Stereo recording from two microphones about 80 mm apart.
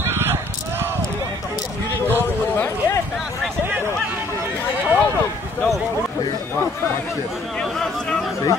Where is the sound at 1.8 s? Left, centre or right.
Left.